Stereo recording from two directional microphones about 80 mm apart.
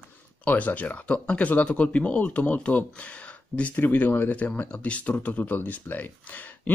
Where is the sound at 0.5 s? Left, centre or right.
Centre.